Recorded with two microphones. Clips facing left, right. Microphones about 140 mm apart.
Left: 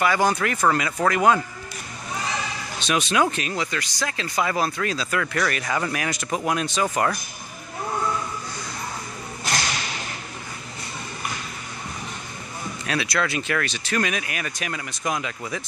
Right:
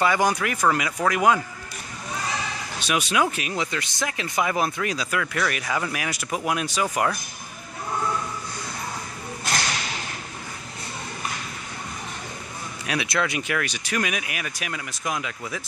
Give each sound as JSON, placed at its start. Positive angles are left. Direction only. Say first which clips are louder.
{"t": 0.0, "sound": "speech", "louder": "left 1 dB", "side_deg": -15}
{"t": 2.8, "sound": "speech", "louder": "left 2 dB", "side_deg": -10}
{"t": 3.5, "sound": "speech", "louder": "even", "side_deg": -20}
{"t": 5.2, "sound": "speech", "louder": "left 2 dB", "side_deg": -5}
{"t": 12.8, "sound": "speech", "louder": "even", "side_deg": -20}